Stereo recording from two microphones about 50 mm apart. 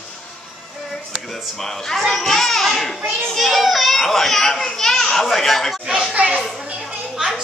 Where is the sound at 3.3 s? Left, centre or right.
Centre.